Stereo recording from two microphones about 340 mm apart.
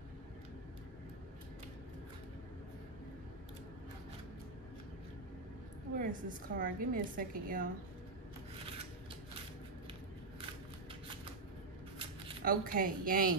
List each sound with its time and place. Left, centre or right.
5.9 s a woman's voice: right
12.0 s speech: centre